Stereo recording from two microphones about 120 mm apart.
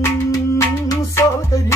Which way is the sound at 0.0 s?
25° left (ahead or behind).